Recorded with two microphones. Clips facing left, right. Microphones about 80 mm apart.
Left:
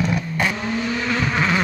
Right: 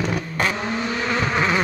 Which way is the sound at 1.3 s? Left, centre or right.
Centre.